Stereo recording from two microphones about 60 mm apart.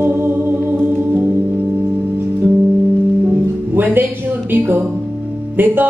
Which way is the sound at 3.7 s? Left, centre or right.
Right.